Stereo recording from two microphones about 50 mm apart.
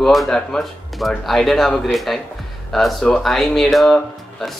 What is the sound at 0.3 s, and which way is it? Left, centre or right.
Speech, centre.